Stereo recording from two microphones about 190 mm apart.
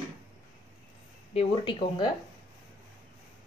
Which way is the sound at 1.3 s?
25° left (ahead or behind).